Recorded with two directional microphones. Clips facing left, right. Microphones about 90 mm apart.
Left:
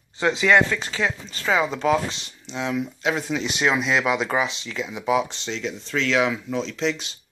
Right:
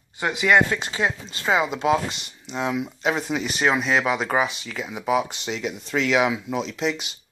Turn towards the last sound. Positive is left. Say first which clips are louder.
# even
turn(degrees=-5)  # may be behind; listen again after turning